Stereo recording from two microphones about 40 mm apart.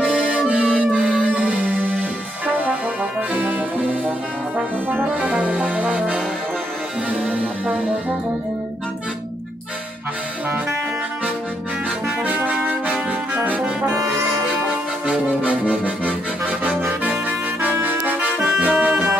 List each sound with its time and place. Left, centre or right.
0.0 s music: right
2.0 s brass instrument: right
5.1 s music: right
12.4 s brass instrument: right
15.0 s accordion: right
17.1 s music: right